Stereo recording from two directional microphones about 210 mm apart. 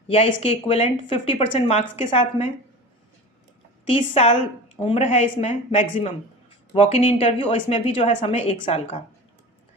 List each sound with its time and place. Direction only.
0.1 s speech: 30° left (ahead or behind)
3.9 s speech: 30° left (ahead or behind)